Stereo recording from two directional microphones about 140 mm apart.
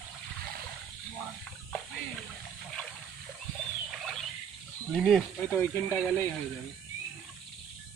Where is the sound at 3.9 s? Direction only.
Centre (ahead or behind).